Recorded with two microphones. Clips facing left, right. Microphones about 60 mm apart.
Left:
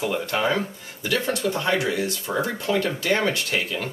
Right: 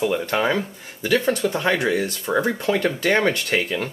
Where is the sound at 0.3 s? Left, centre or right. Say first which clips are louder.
Even; right.